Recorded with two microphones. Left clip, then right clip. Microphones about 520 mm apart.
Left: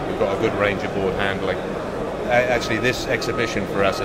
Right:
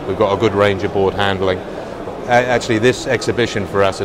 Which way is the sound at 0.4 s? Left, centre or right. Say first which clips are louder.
Right 6 dB; right.